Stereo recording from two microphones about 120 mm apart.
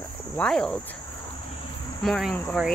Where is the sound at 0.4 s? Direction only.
5° left (ahead or behind).